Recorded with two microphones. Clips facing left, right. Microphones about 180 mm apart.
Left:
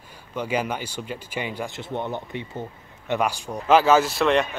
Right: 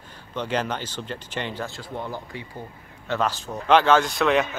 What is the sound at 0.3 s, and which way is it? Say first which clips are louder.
Speech: left 1 dB; 10° left (ahead or behind).